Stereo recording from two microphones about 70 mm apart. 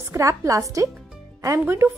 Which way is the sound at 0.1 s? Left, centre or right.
Right.